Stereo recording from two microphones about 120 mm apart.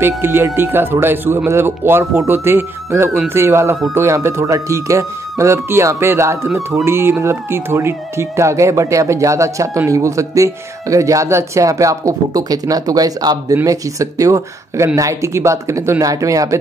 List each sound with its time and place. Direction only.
0.0 s speech: 20° right (ahead or behind)